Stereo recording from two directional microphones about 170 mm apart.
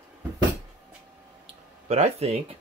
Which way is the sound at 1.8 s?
40° right (ahead or behind).